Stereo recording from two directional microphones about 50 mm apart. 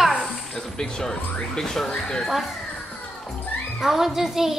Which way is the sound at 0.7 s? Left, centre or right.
Centre.